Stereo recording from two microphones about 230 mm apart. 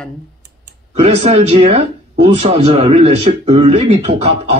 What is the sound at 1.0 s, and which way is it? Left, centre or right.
Speech, right.